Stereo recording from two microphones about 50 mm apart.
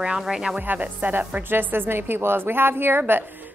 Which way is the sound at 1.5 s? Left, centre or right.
Right.